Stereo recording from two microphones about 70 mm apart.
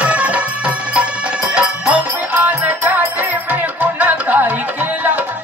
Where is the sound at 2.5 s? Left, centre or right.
Right.